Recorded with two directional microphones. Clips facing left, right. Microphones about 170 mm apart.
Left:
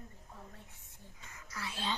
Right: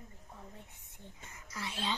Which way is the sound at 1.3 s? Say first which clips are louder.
Right 1 dB; 20° right (ahead or behind).